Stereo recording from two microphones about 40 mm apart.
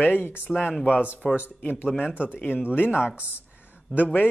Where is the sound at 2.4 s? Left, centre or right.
Left.